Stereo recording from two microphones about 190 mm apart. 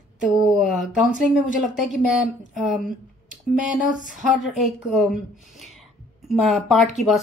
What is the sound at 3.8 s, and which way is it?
Speech, 45° left (ahead or behind).